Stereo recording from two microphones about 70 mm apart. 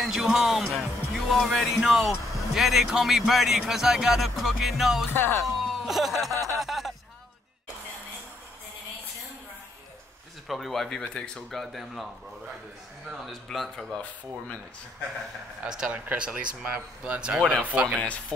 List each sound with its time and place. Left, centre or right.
0.0 s speech: centre
5.1 s speech: left
5.4 s speech: centre
6.6 s a sound: centre
10.5 s speech: centre
13.2 s speech: centre
15.6 s speech: centre